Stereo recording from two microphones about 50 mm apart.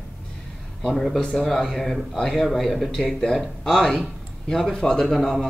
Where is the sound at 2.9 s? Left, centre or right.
Centre.